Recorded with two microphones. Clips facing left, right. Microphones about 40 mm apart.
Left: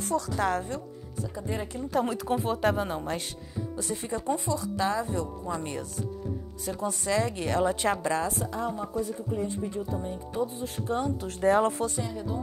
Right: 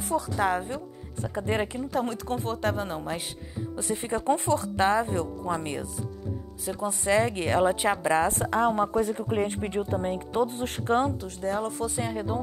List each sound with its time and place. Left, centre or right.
0.4 s a woman's voice: centre
1.2 s speech: right
1.9 s a woman's voice: centre
3.7 s speech: right
5.4 s speech: right
6.6 s a woman's voice: centre
7.1 s speech: right
8.3 s a woman's voice: right
11.2 s speech: left
12.0 s speech: right